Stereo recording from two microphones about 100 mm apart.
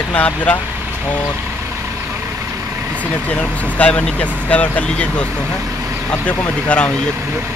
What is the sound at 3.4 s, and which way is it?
Speech, 15° left (ahead or behind).